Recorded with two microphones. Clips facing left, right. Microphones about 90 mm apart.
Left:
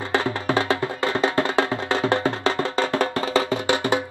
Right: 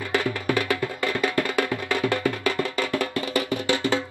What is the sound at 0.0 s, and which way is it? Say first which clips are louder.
Music: left 2 dB; 25° left (ahead or behind).